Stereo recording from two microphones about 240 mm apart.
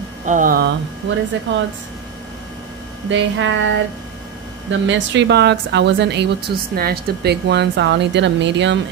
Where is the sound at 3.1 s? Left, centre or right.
Right.